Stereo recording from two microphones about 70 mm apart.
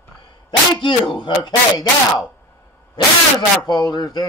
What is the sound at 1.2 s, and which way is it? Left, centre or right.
Speech, left.